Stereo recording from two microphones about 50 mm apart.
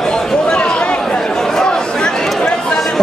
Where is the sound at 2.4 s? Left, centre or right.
Centre.